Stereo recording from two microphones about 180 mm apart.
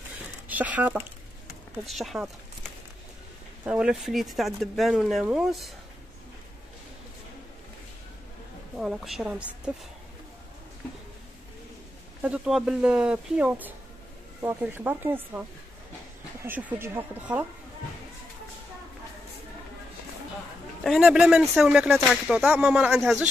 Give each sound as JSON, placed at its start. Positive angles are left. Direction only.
{"t": 0.5, "sound": "speech", "side_deg": -10}
{"t": 3.6, "sound": "speech", "side_deg": -5}
{"t": 8.7, "sound": "speech", "side_deg": 0}
{"t": 12.2, "sound": "speech", "side_deg": -5}
{"t": 16.4, "sound": "speech", "side_deg": -10}
{"t": 20.8, "sound": "speech", "side_deg": 0}